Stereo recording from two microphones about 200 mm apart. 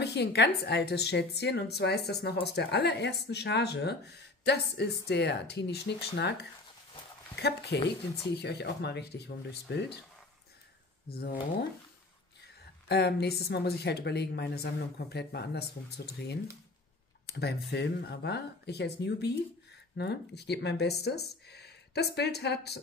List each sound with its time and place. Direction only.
0.0 s a woman's voice: 55° left (ahead or behind)
7.3 s a woman's voice: 55° left (ahead or behind)
11.1 s speech: 50° left (ahead or behind)
12.8 s a woman's voice: 55° left (ahead or behind)
17.3 s a woman's voice: 55° left (ahead or behind)